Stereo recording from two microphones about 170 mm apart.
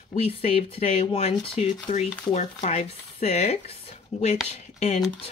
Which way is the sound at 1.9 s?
50° left (ahead or behind).